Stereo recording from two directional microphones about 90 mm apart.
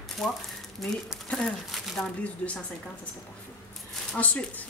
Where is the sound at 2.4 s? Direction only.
15° left (ahead or behind).